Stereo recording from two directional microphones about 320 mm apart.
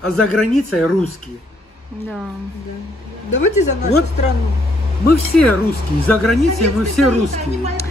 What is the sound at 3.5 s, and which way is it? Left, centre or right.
Speech, left.